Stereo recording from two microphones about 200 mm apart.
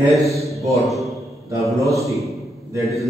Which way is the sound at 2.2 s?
15° right (ahead or behind).